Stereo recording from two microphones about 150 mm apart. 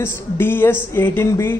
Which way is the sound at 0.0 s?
15° left (ahead or behind).